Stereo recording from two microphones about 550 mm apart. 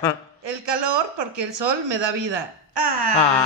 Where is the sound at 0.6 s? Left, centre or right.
Right.